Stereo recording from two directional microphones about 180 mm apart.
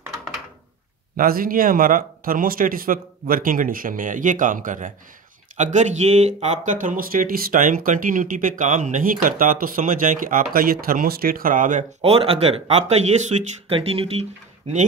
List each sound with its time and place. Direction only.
1.1 s speech: 55° right (ahead or behind)
12.0 s speech: 30° right (ahead or behind)